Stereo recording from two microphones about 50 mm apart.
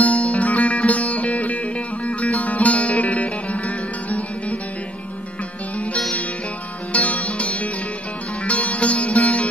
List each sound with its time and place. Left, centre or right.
0.0 s music: left
6.9 s music: left